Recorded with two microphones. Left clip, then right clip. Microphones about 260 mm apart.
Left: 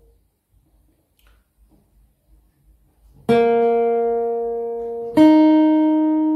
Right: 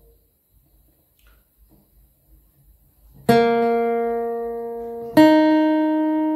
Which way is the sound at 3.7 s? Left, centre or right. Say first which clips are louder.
Left 3 dB; right.